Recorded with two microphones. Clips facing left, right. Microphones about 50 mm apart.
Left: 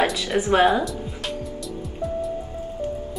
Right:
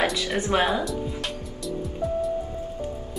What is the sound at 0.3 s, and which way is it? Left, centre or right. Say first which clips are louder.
Speech: left 4 dB; centre.